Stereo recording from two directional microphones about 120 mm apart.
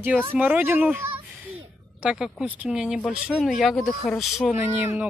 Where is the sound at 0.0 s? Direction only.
15° right (ahead or behind).